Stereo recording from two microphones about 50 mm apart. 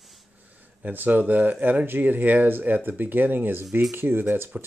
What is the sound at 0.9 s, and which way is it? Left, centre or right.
Speech, right.